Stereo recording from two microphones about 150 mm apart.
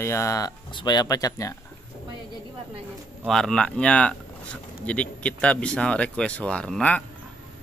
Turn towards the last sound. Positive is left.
turn(degrees=5)  # may be behind; listen again after turning